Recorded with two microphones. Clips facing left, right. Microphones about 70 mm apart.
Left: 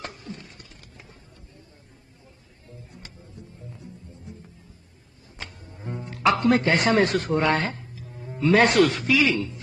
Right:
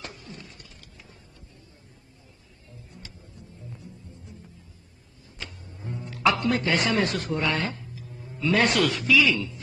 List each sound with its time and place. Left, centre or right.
0.0 s a sound: left
2.9 s music: left
5.4 s speech: left